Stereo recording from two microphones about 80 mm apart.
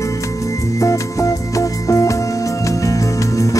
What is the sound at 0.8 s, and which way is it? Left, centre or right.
Music, left.